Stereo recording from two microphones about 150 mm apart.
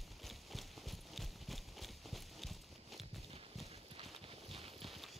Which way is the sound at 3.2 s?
40° right (ahead or behind).